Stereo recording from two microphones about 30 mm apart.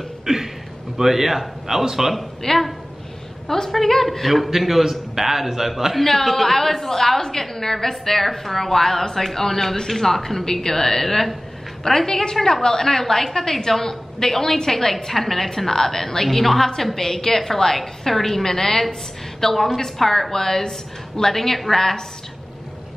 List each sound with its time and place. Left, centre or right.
0.2 s a sound: centre
0.9 s a man's voice: centre
2.4 s a woman's voice: centre
5.9 s a woman's voice: centre